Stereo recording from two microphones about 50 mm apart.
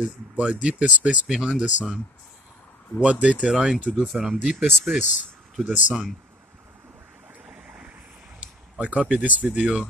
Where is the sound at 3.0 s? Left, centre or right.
Right.